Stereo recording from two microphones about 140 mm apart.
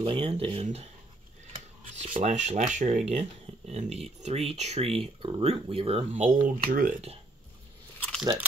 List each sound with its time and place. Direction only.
0.0 s speech: 40° right (ahead or behind)
2.0 s speech: 45° right (ahead or behind)
2.3 s speech: 60° right (ahead or behind); by 7.0 s 75° right (ahead or behind)